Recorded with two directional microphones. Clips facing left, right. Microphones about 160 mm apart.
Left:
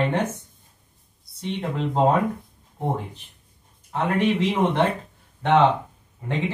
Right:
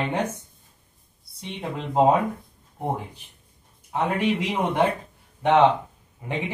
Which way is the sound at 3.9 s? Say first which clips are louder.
Left 1 dB; 10° right (ahead or behind).